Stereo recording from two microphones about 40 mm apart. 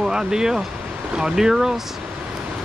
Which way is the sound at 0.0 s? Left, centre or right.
Centre.